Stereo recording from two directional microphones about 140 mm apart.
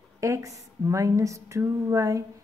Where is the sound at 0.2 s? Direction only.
20° right (ahead or behind).